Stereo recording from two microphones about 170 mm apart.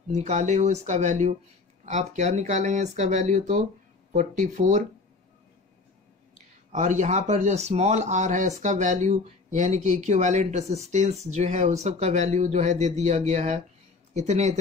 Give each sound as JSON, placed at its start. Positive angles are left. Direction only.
{"t": 0.1, "sound": "speech", "side_deg": -40}
{"t": 6.7, "sound": "speech", "side_deg": -45}